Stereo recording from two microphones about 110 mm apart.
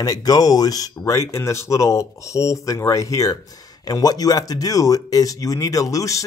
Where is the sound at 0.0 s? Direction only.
35° left (ahead or behind).